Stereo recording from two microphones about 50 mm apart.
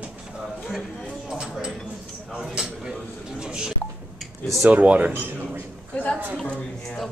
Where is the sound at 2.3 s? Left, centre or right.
Centre.